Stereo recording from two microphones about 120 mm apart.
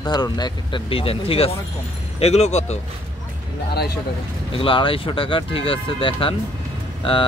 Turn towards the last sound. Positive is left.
turn(degrees=45)  # may be behind; listen again after turning